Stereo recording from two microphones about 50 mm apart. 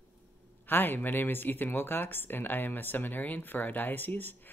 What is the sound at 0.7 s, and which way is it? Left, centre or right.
Speech, left.